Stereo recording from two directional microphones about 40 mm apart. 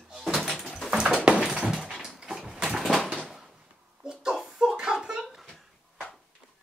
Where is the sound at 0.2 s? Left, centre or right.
Centre.